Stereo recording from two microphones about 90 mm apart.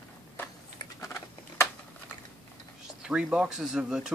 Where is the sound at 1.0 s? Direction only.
30° left (ahead or behind).